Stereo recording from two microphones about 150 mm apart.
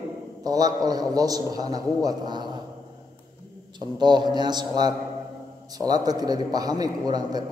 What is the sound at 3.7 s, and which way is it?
A man's voice, 30° right (ahead or behind).